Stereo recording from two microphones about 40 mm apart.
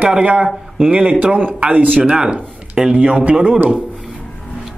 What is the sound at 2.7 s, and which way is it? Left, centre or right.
Speech, centre.